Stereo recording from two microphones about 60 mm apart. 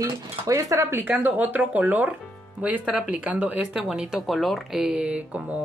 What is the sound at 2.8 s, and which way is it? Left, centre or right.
Speech, centre.